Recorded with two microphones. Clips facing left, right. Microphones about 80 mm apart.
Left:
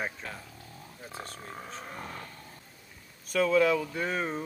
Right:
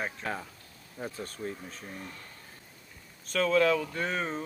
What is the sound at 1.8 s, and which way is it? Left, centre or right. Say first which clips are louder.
Speech: left 3 dB; left.